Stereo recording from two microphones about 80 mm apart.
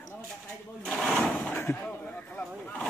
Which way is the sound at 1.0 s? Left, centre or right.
Centre.